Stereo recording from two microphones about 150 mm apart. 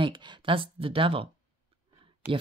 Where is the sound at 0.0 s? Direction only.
30° right (ahead or behind).